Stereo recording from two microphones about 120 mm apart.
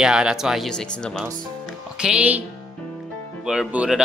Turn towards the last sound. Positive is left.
turn(degrees=-10)  # may be behind; listen again after turning